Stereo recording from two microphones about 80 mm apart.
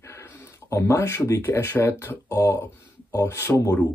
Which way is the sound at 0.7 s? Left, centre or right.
Left.